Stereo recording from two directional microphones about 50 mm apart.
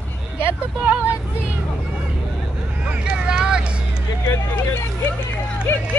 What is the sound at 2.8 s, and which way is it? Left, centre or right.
Vehicle, centre.